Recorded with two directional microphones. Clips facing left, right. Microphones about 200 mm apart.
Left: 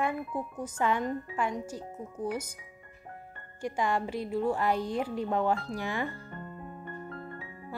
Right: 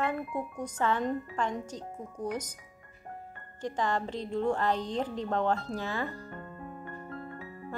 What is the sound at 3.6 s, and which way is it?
Speech, 10° left (ahead or behind).